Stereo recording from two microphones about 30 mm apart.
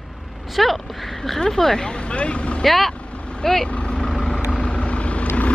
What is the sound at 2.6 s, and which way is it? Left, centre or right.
Speech, centre.